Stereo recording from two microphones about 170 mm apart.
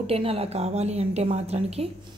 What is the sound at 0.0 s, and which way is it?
A woman's voice, 35° right (ahead or behind).